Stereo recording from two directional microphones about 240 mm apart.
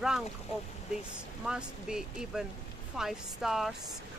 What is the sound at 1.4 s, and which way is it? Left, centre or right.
Speech, centre.